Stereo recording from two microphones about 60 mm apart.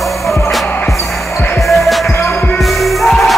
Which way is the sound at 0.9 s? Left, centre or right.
Left.